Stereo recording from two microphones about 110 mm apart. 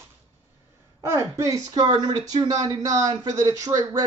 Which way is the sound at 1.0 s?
25° right (ahead or behind).